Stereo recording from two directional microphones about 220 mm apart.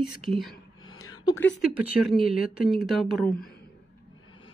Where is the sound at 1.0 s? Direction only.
15° left (ahead or behind).